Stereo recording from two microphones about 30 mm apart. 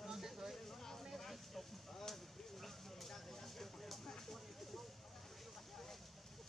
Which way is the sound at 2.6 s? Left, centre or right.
Centre.